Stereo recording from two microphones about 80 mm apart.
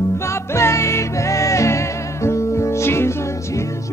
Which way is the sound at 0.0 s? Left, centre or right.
Left.